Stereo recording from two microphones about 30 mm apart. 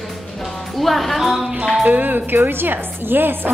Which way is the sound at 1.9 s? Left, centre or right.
Right.